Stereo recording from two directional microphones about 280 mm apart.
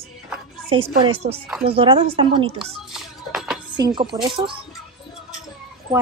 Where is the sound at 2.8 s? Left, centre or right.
Centre.